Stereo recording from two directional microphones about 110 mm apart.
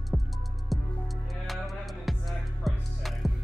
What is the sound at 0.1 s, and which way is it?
Music, centre (ahead or behind).